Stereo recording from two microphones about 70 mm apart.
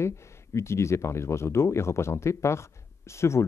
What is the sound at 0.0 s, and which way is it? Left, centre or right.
Speech, left.